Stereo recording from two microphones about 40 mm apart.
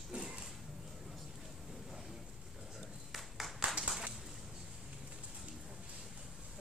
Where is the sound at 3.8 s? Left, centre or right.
Right.